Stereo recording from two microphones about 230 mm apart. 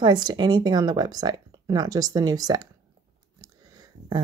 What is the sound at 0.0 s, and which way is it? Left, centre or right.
Speech, centre.